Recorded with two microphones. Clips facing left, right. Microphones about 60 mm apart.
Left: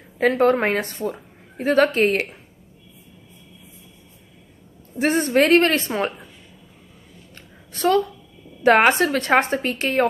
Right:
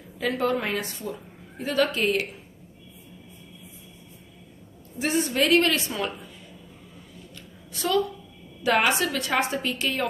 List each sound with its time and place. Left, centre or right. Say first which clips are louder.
0.2 s a woman's voice: left 8 dB; left
4.9 s a woman's voice: left 7 dB; left
7.7 s a woman's voice: left 5 dB; left